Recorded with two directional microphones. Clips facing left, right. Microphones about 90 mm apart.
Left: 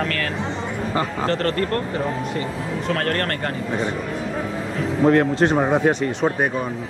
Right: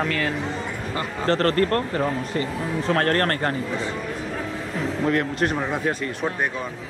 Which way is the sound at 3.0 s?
35° right (ahead or behind).